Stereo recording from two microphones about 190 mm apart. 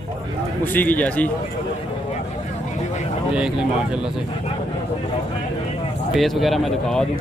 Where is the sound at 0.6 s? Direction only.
10° left (ahead or behind).